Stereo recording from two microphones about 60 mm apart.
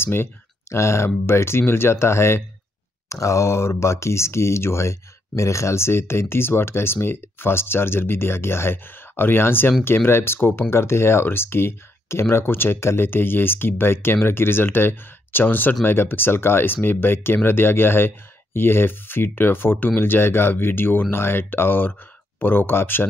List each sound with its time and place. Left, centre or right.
0.0 s speech: left